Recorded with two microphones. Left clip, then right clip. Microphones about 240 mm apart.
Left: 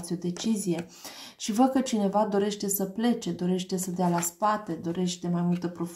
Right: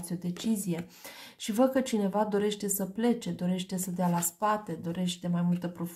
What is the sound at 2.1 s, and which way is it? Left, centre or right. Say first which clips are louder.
Speech: left 4 dB; right.